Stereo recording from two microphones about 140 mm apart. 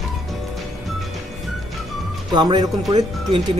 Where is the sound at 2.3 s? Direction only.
30° right (ahead or behind).